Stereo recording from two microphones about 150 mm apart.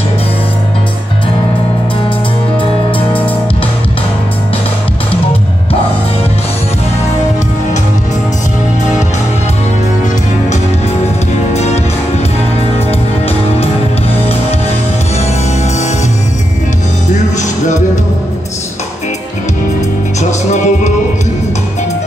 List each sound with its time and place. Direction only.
11.5 s music: 45° left (ahead or behind)
17.1 s music: 55° left (ahead or behind)
20.2 s music: 50° left (ahead or behind)